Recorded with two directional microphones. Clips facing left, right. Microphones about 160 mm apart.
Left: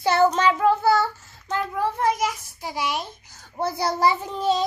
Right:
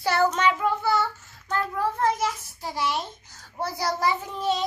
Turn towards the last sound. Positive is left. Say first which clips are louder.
# left 4 dB
turn(degrees=30)  # may be behind; listen again after turning